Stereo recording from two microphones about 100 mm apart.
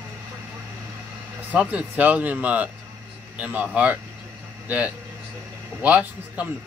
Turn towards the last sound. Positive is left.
turn(degrees=-15)  # may be behind; listen again after turning